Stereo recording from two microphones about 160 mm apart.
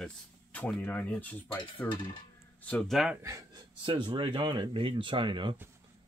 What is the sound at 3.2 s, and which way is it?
Speech, 20° right (ahead or behind).